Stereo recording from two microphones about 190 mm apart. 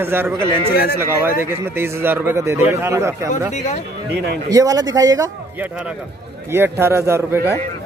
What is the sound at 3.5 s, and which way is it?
Speech, 40° left (ahead or behind).